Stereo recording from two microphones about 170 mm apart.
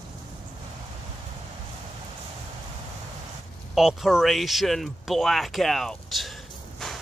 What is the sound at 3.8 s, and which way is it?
Speech, centre (ahead or behind).